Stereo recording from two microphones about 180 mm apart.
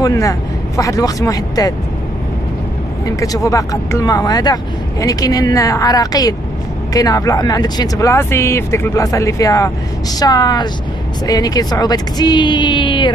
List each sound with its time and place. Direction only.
0.0 s speech: 20° left (ahead or behind)
3.1 s speech: 20° left (ahead or behind)